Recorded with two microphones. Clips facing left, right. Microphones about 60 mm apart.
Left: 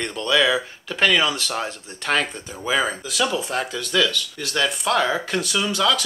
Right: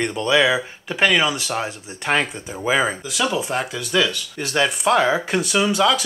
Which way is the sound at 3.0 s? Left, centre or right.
Centre.